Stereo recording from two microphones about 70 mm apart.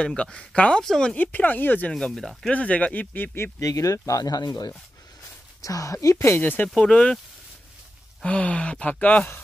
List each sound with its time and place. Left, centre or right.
0.0 s speech: centre
1.1 s speech: left
1.9 s speech: centre
2.5 s speech: centre
3.5 s speech: left
5.6 s speech: left
6.3 s speech: left
6.7 s speech: centre
8.2 s speech: centre